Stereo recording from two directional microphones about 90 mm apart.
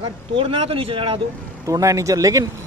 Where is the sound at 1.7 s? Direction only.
35° right (ahead or behind).